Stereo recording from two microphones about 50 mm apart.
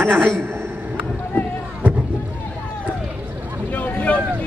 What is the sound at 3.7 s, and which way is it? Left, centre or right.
Boat, left.